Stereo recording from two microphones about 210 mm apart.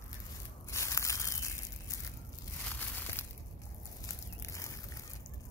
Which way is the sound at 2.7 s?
10° left (ahead or behind).